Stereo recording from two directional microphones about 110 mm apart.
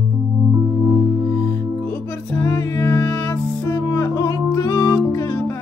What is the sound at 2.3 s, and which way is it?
Music, 20° left (ahead or behind).